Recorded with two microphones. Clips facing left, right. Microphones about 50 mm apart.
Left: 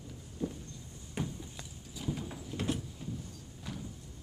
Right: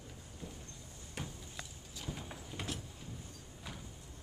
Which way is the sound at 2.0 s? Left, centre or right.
Centre.